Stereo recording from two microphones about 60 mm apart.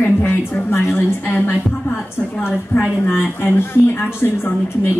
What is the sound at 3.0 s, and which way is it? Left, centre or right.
Speech, left.